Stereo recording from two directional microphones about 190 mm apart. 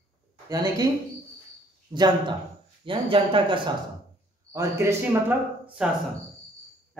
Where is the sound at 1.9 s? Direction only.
25° right (ahead or behind).